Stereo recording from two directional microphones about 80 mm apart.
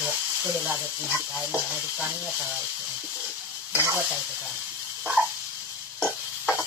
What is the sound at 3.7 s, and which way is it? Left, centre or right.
Snake, right.